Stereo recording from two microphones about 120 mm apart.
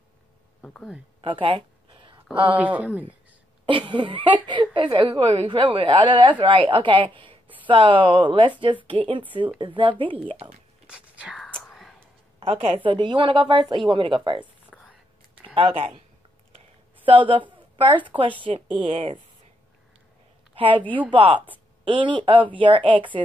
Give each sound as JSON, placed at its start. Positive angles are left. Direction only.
{"t": 0.6, "sound": "a sound", "side_deg": 10}
{"t": 1.2, "sound": "a sound", "side_deg": -45}
{"t": 3.6, "sound": "a woman's voice", "side_deg": -45}
{"t": 10.9, "sound": "whispering", "side_deg": -10}
{"t": 11.3, "sound": "whispering", "side_deg": 10}
{"t": 12.4, "sound": "a woman's voice", "side_deg": -55}
{"t": 14.7, "sound": "whispering", "side_deg": 5}
{"t": 15.5, "sound": "a woman's voice", "side_deg": -50}
{"t": 16.5, "sound": "a sound", "side_deg": -45}
{"t": 17.7, "sound": "a woman's voice", "side_deg": -50}
{"t": 20.5, "sound": "a woman's voice", "side_deg": -45}